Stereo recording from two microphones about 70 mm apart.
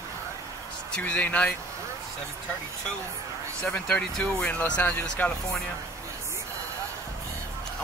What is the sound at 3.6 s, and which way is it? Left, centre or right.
Speech, centre.